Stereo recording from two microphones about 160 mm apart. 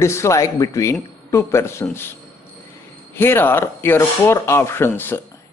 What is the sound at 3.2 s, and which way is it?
A man's voice, 15° left (ahead or behind).